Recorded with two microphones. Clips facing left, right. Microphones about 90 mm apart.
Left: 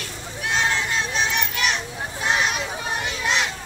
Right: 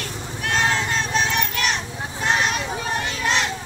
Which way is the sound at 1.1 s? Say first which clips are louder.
Right 2 dB; centre (ahead or behind).